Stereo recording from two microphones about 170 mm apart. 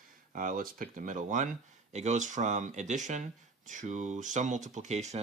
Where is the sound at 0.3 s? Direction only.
50° right (ahead or behind).